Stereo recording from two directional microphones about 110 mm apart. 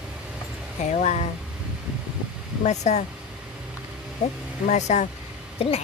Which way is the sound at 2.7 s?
90° left.